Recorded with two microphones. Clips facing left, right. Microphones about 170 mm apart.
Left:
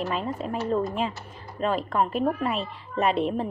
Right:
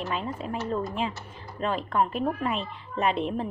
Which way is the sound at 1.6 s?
40° left (ahead or behind).